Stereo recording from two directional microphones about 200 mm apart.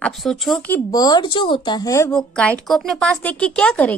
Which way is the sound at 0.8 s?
20° left (ahead or behind).